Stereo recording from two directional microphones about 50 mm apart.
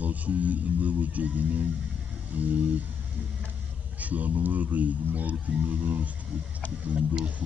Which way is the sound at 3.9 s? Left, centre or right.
Right.